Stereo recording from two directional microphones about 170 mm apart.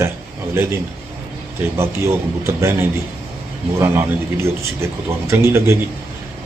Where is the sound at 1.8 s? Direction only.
15° right (ahead or behind).